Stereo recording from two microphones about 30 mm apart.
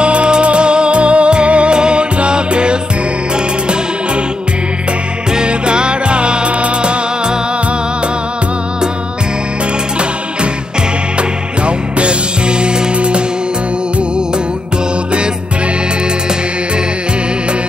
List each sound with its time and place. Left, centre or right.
0.0 s music: right
5.3 s music: right
11.1 s music: right